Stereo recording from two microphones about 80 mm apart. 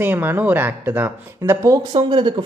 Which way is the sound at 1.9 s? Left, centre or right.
Right.